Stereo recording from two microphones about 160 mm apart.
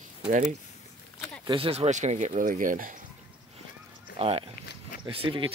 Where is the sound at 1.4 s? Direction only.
35° right (ahead or behind); by 3.0 s 55° right (ahead or behind).